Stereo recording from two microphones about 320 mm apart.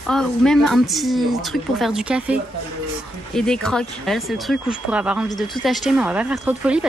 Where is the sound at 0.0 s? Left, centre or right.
Centre.